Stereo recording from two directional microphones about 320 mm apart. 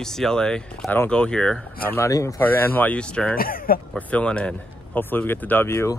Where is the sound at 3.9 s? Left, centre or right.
Centre.